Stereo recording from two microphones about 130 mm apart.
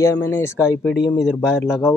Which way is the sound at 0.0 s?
20° left (ahead or behind).